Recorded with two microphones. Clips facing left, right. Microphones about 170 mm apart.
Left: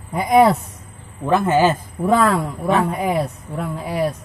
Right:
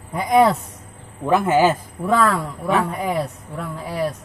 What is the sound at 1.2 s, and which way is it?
Speech, 10° right (ahead or behind).